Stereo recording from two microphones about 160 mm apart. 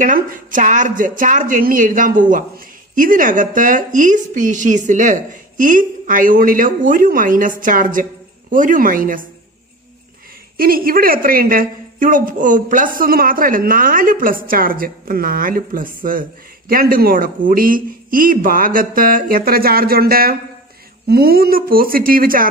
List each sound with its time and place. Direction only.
0.0 s a woman's voice: 55° right (ahead or behind)
10.6 s a woman's voice: 65° right (ahead or behind)